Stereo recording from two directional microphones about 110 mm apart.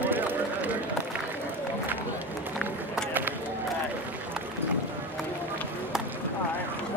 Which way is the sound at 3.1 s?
15° right (ahead or behind).